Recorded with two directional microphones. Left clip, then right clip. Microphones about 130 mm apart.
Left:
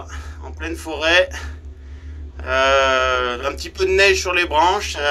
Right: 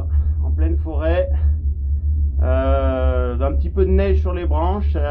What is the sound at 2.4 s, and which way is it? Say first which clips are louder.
Speech: left 6 dB; 10° right (ahead or behind).